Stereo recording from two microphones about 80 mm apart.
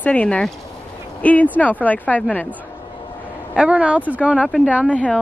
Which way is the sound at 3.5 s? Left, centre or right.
Centre.